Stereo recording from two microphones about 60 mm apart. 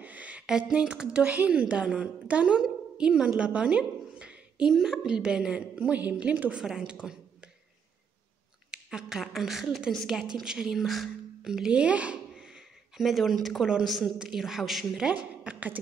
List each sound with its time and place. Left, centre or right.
0.0 s a sound: right
0.5 s a woman's voice: centre
5.8 s a woman's voice: right
6.6 s a woman's voice: centre
8.7 s a woman's voice: centre
12.9 s speech: centre
15.0 s a woman's voice: right